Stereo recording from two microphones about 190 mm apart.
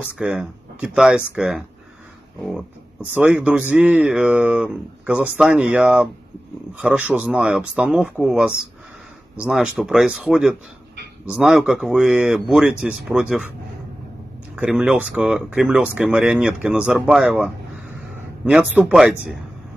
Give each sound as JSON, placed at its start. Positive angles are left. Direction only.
{"t": 0.0, "sound": "speech", "side_deg": -5}
{"t": 14.5, "sound": "speech", "side_deg": -5}